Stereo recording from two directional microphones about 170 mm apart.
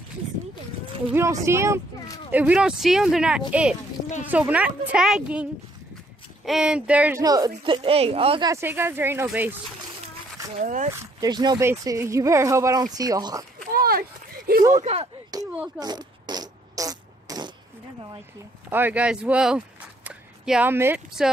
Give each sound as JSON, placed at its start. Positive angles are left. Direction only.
{"t": 1.1, "sound": "a woman's voice", "side_deg": -15}
{"t": 7.2, "sound": "speech", "side_deg": -20}
{"t": 8.5, "sound": "a woman's voice", "side_deg": -15}
{"t": 10.6, "sound": "speech", "side_deg": -45}
{"t": 11.1, "sound": "speech", "side_deg": -25}
{"t": 13.7, "sound": "a sound", "side_deg": -60}
{"t": 14.7, "sound": "speech", "side_deg": -45}
{"t": 15.3, "sound": "a sound", "side_deg": -25}
{"t": 15.8, "sound": "fart", "side_deg": -25}
{"t": 18.7, "sound": "speech", "side_deg": -10}